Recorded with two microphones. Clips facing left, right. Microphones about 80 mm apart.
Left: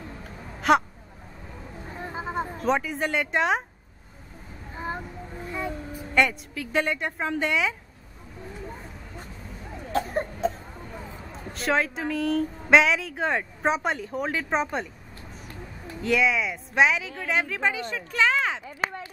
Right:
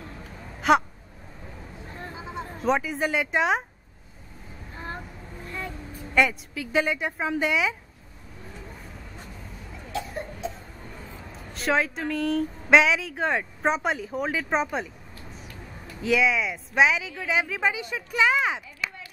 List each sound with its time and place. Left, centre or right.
0.6 s gasp: centre
2.1 s a sound: left
2.5 s speech: centre
4.7 s a sound: centre
6.1 s speech: centre
9.9 s cough: left
11.5 s speech: centre
16.0 s speech: centre
18.8 s a sound: left